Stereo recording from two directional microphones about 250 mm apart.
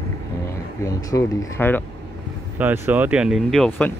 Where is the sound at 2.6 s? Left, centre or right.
Centre.